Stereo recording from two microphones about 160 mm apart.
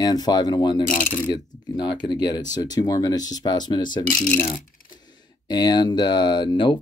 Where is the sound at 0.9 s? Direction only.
55° left (ahead or behind).